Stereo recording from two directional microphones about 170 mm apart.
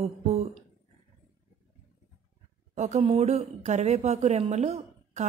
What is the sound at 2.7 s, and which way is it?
A woman's voice, 40° right (ahead or behind).